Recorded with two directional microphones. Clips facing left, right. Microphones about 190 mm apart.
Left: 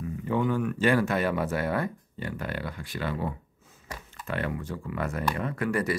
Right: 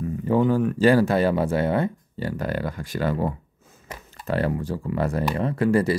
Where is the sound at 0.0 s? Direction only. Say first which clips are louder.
Right 7 dB; 35° right (ahead or behind).